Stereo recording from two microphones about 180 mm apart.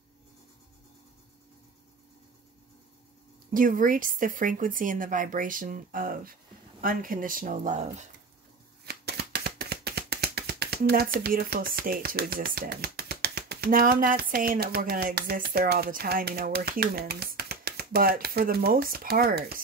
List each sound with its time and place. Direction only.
3.5 s speech: 50° right (ahead or behind)
8.8 s shuffling cards: 65° right (ahead or behind)